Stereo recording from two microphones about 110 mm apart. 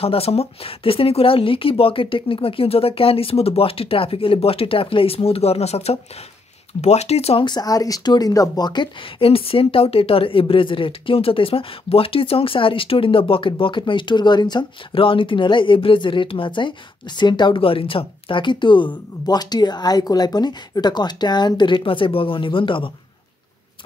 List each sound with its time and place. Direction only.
0.0 s speech: 60° left (ahead or behind)
7.4 s speech: 35° left (ahead or behind)
9.2 s speech: 60° left (ahead or behind)